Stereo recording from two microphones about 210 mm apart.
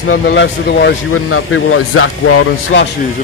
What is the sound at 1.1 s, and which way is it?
Speech, 90° left.